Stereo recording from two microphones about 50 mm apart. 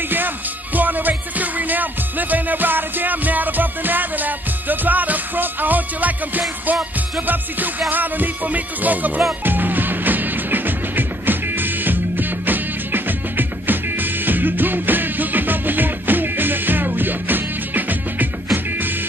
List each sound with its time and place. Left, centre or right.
0.7 s music: right
7.9 s music: right